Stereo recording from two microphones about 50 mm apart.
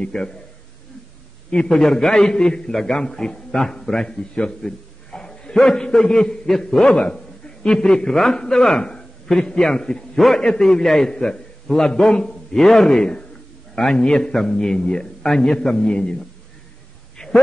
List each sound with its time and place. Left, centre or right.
0.0 s a man's voice: centre
1.7 s a man's voice: centre
17.2 s a sound: centre